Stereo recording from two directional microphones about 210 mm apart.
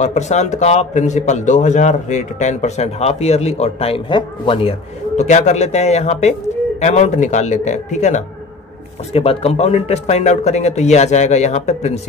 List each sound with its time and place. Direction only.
0.0 s a man's voice: 35° left (ahead or behind)